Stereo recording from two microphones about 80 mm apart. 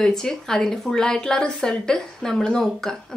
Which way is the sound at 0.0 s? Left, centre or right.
Centre.